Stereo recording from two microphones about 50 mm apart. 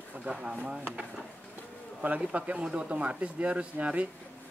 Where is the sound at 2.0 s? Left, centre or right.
Right.